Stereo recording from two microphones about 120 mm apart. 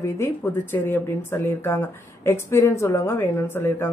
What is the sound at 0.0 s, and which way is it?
Speech, 20° left (ahead or behind).